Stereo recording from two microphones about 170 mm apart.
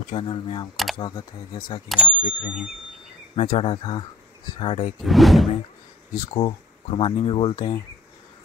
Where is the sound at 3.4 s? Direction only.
35° left (ahead or behind).